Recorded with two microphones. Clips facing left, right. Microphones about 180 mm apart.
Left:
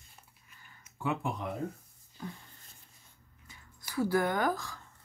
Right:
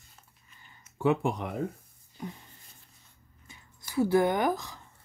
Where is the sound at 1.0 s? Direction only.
75° right (ahead or behind).